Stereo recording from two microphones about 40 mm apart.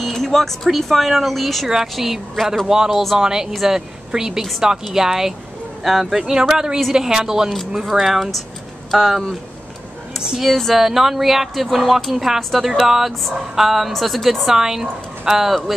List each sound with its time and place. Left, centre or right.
0.1 s a sound: centre
0.7 s a woman's voice: centre
1.7 s a woman's voice: centre
6.3 s a woman's voice: right; by 9.4 s centre
10.4 s speech: centre
10.7 s a woman's voice: centre